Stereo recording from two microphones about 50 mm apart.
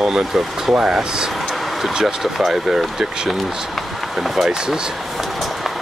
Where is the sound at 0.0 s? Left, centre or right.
Centre.